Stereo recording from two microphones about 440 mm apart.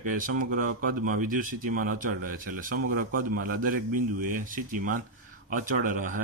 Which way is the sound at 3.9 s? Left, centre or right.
Right.